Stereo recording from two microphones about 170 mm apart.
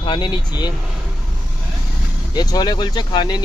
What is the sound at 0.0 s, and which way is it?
Speech, 25° left (ahead or behind).